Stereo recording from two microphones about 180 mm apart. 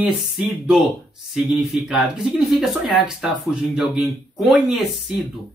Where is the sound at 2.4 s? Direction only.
5° right (ahead or behind).